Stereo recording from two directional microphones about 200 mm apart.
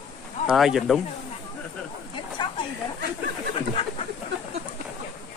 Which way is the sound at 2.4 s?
20° left (ahead or behind).